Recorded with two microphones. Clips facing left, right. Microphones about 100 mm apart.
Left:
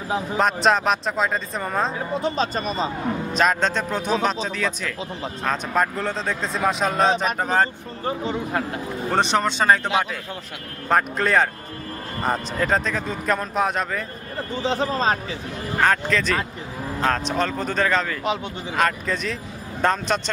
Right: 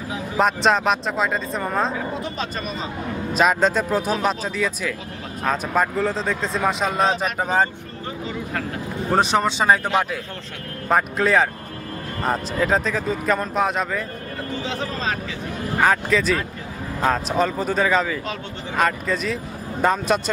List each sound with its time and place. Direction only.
0.4 s speech: centre (ahead or behind)
1.9 s speech: 30° left (ahead or behind)
3.3 s speech: 5° right (ahead or behind)
9.1 s speech: 5° right (ahead or behind)
14.6 s speech: 35° left (ahead or behind)
15.8 s speech: 5° right (ahead or behind)